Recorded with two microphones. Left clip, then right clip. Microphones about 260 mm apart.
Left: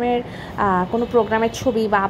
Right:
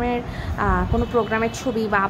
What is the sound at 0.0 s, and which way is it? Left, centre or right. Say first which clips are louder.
A woman's voice: left 3 dB; centre.